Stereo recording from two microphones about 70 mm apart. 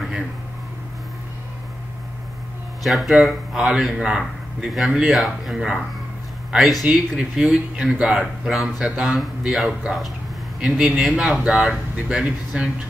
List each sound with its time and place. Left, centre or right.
2.8 s speech: centre